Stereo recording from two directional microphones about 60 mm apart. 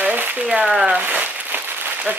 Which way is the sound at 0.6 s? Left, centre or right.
Centre.